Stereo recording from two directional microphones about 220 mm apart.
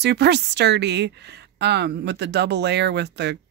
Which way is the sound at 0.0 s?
50° right (ahead or behind).